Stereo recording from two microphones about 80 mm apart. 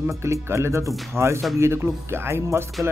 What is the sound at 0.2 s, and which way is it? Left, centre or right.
Speech, right.